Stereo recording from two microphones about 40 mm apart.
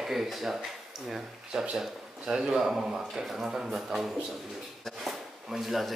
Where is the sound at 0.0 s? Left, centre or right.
Centre.